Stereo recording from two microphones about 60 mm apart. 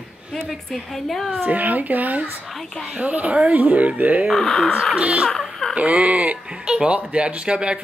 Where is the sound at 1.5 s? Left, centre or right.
Right.